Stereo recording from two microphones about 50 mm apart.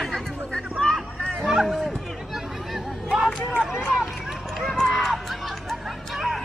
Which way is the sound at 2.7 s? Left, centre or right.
Centre.